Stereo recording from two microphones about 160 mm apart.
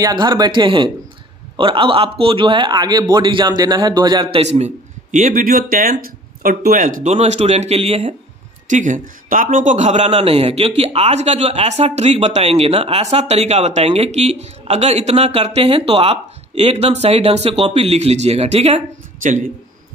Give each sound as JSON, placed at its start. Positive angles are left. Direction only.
{"t": 0.0, "sound": "a man's voice", "side_deg": -25}
{"t": 4.4, "sound": "a man's voice", "side_deg": -45}